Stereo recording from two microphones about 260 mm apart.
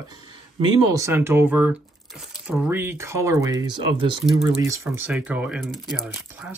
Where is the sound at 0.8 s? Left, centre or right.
Centre.